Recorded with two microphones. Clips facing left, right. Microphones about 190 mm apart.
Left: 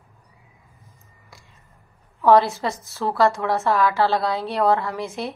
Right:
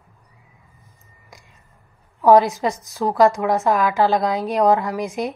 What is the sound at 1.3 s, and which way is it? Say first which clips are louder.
Music: right 3 dB; 15° right (ahead or behind).